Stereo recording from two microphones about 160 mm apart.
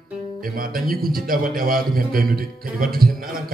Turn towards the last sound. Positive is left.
turn(degrees=-65)  # may be behind; listen again after turning